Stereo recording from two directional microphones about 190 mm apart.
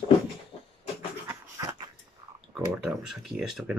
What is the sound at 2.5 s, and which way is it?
Speech, 5° right (ahead or behind).